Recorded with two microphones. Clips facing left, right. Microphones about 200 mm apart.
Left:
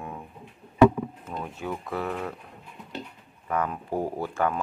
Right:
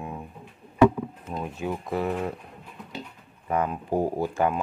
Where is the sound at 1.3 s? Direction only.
20° right (ahead or behind).